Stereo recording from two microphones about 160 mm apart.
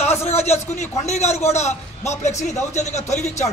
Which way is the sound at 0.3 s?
45° left (ahead or behind).